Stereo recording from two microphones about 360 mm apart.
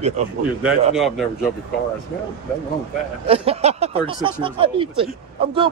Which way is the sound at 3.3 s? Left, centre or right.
Centre.